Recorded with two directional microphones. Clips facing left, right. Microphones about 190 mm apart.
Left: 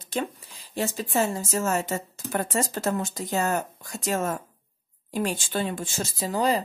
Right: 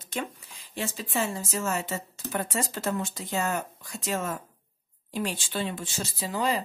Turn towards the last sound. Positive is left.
turn(degrees=40)  # may be behind; listen again after turning